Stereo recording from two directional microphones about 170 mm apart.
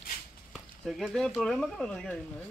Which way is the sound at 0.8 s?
Centre (ahead or behind).